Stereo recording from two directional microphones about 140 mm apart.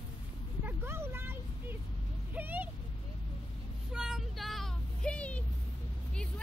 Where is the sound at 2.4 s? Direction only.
10° right (ahead or behind).